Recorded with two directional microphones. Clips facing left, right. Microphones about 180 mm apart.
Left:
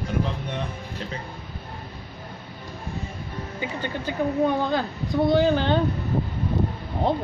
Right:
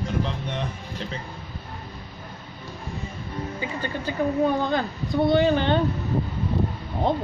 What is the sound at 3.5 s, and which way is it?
Speech, 15° left (ahead or behind).